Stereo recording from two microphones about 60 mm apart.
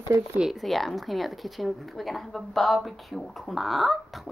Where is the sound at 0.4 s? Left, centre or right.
Centre.